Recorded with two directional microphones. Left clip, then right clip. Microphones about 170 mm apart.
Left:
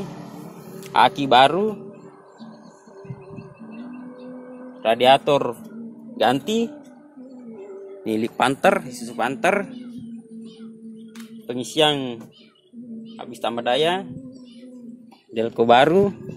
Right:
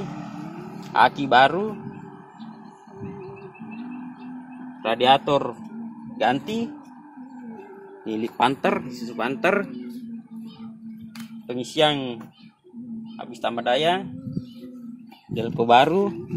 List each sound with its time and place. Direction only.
0.7 s speech: 60° left (ahead or behind)
4.8 s a man's voice: 50° left (ahead or behind)
6.1 s speech: 75° left (ahead or behind)
8.0 s a man's voice: 65° left (ahead or behind); by 9.7 s 35° left (ahead or behind)
11.4 s a man's voice: 45° left (ahead or behind)
15.3 s speech: 50° left (ahead or behind)